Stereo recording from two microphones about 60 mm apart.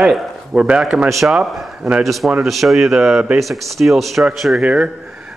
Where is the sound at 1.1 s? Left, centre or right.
Centre.